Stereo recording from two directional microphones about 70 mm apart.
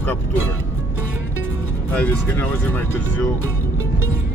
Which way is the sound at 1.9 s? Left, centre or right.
Left.